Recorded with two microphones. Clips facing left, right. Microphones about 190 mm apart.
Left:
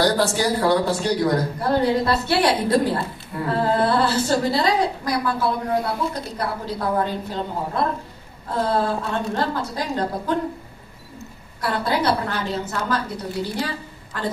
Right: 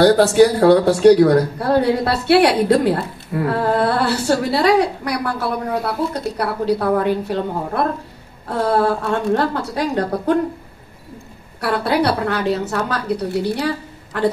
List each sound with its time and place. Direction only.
0.0 s a woman's voice: 65° right (ahead or behind)
11.6 s a woman's voice: 70° right (ahead or behind)